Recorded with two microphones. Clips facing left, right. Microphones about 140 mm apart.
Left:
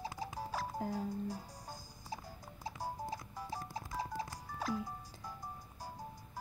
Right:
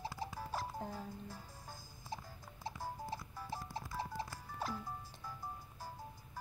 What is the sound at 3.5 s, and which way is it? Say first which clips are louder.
Clip-clop: left 1 dB; 10° left (ahead or behind).